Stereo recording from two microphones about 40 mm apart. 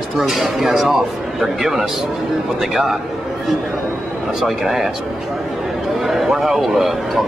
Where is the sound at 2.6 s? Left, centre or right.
Centre.